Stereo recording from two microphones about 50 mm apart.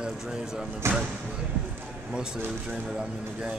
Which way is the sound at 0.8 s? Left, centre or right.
Right.